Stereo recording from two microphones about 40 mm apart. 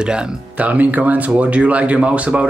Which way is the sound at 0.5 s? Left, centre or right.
Right.